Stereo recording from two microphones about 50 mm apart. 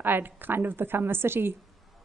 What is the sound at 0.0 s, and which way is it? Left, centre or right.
A woman's voice, right.